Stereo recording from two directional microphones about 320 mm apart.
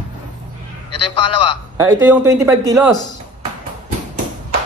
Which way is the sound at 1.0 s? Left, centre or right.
Centre.